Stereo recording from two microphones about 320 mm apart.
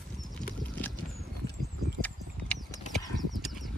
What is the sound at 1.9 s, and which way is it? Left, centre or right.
Horse, centre.